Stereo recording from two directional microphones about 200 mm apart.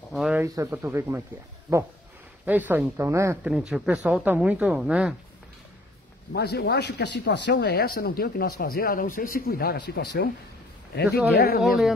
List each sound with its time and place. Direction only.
0.1 s speech: 5° right (ahead or behind)
3.5 s speech: 5° right (ahead or behind)
6.3 s speech: 55° left (ahead or behind)